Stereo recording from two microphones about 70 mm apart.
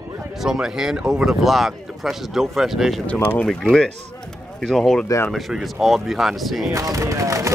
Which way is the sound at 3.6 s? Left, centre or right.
Centre.